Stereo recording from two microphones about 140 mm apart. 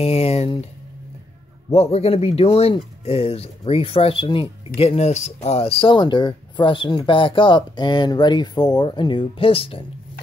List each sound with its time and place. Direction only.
0.0 s speech: 45° left (ahead or behind)
1.7 s speech: 50° left (ahead or behind)